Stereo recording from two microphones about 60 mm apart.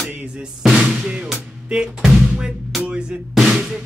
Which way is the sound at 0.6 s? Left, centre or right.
Centre.